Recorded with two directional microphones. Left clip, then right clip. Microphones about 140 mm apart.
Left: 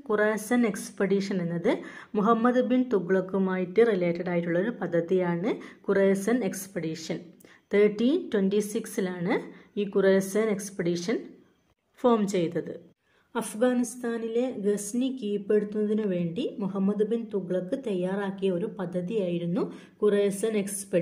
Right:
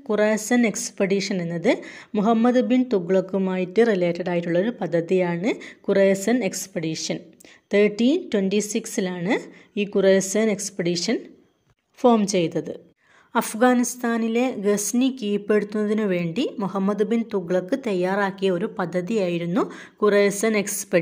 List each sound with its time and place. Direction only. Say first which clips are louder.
0.1 s a woman's voice: right 5 dB; 45° right (ahead or behind)
13.3 s a woman's voice: right 7 dB; 30° right (ahead or behind)